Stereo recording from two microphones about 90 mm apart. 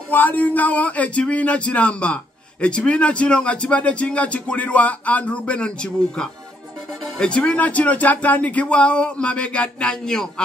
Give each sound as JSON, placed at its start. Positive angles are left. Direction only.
{"t": 0.1, "sound": "speech", "side_deg": 20}